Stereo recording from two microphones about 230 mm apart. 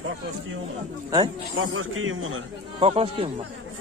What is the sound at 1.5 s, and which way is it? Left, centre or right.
Speech, right.